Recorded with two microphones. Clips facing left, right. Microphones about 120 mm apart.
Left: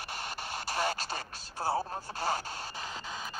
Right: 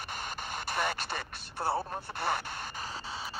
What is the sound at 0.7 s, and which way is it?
Radio, 55° right (ahead or behind).